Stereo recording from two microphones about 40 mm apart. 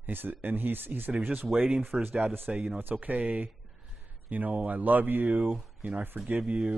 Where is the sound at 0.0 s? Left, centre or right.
Right.